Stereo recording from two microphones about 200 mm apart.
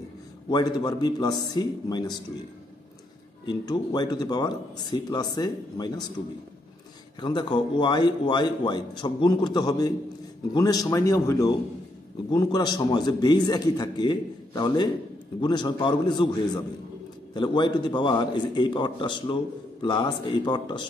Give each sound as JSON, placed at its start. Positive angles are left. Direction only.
{"t": 0.5, "sound": "a man's voice", "side_deg": 20}
{"t": 3.4, "sound": "a man's voice", "side_deg": 20}
{"t": 7.2, "sound": "a man's voice", "side_deg": 20}
{"t": 17.3, "sound": "a man's voice", "side_deg": 20}